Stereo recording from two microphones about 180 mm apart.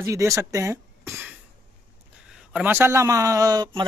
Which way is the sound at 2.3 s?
5° right (ahead or behind).